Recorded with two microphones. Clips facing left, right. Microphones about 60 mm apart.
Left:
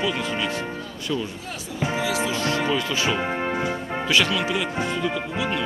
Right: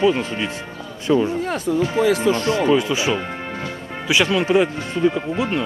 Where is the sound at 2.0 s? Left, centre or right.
Right.